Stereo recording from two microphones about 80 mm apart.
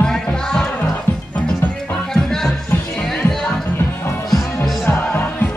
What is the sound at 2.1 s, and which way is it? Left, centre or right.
Music, centre.